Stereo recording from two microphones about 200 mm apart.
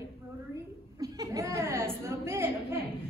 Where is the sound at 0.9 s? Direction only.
15° right (ahead or behind).